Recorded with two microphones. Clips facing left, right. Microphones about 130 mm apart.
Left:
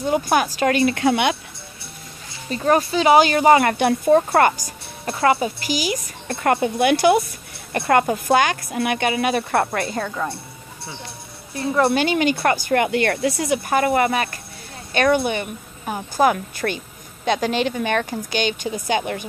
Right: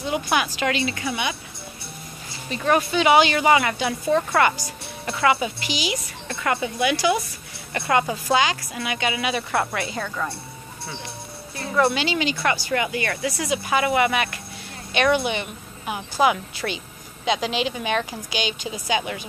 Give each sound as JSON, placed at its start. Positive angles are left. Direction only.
{"t": 0.0, "sound": "a woman's voice", "side_deg": 40}
{"t": 2.5, "sound": "speech", "side_deg": 35}
{"t": 3.7, "sound": "a woman's voice", "side_deg": 55}
{"t": 11.9, "sound": "a woman's voice", "side_deg": 50}